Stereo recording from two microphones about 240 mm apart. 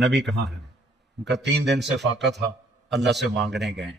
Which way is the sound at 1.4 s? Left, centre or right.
Right.